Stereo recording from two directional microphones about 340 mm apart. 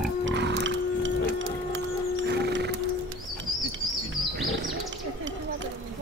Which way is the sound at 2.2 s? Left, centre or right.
Right.